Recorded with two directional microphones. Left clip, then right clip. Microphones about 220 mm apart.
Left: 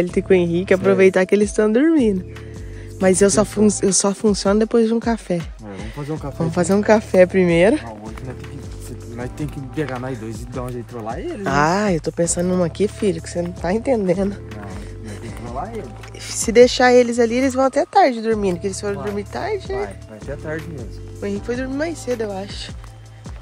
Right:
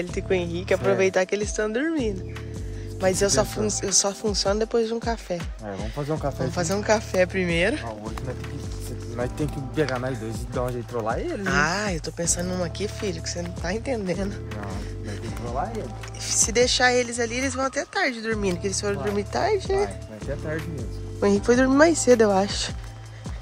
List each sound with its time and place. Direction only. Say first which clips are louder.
0.0 s speech: left 9 dB; 35° left (ahead or behind)
6.5 s speech: left 8 dB; 35° left (ahead or behind)
9.1 s speech: right 1 dB; 15° right (ahead or behind)
9.8 s speech: even; centre (ahead or behind)
11.4 s speech: left 7 dB; 25° left (ahead or behind)
16.3 s speech: left 9 dB; 35° left (ahead or behind); by 20.8 s centre (ahead or behind)
21.2 s speech: right 5 dB; 30° right (ahead or behind)